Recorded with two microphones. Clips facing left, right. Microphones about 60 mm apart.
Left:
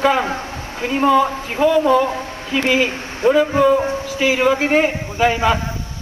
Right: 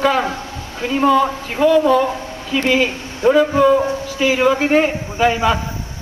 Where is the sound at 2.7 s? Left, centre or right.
Left.